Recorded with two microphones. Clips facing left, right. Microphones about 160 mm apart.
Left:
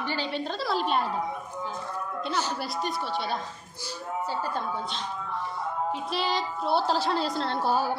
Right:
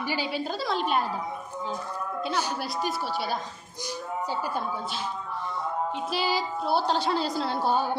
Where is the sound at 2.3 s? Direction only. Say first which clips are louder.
Left 1 dB; 10° right (ahead or behind).